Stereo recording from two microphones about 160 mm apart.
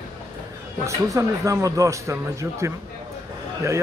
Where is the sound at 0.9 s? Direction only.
20° right (ahead or behind).